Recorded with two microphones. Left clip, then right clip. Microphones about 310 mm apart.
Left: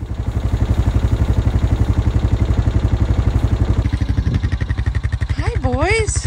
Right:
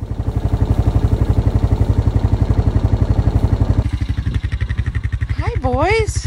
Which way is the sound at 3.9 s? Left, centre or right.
Centre.